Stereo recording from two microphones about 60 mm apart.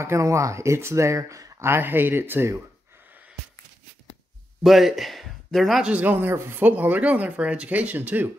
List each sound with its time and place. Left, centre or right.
0.0 s speech: right
1.6 s speech: right
4.6 s a man's voice: centre
5.8 s speech: right
6.6 s speech: right